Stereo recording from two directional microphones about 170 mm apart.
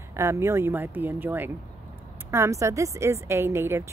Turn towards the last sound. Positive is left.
turn(degrees=-15)  # may be behind; listen again after turning